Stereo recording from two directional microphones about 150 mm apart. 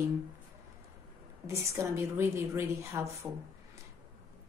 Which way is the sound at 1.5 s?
20° right (ahead or behind).